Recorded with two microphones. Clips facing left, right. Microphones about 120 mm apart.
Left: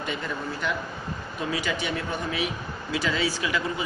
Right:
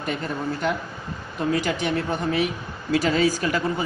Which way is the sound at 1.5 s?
50° right (ahead or behind).